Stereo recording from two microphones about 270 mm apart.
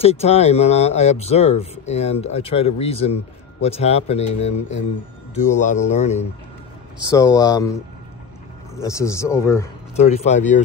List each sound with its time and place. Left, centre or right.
0.0 s speech: left
7.1 s a man's voice: centre
8.7 s a man's voice: centre
9.9 s speech: left